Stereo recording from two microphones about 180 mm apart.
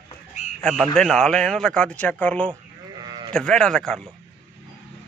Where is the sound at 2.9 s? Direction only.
25° right (ahead or behind).